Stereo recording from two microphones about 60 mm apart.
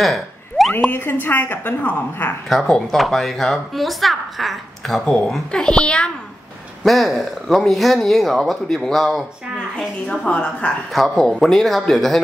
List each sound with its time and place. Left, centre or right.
0.0 s a sound: centre
1.2 s a woman's voice: left
2.6 s speech: centre
6.8 s speech: centre
9.8 s speech: centre
10.9 s speech: centre